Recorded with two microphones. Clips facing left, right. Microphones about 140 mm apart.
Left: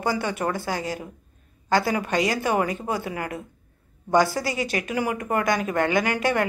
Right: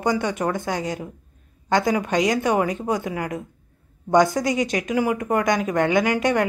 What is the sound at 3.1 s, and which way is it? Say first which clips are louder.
Speech: right 3 dB; centre (ahead or behind).